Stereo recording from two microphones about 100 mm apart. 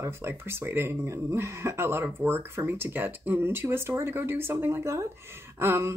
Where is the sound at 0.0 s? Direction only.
25° right (ahead or behind).